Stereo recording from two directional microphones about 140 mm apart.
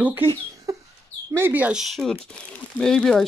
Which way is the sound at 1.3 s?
15° right (ahead or behind).